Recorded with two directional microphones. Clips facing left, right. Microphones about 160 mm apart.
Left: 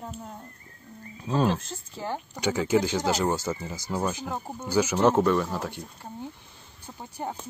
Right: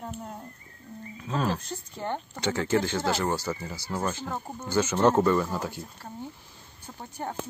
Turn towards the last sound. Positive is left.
turn(degrees=10)  # may be behind; listen again after turning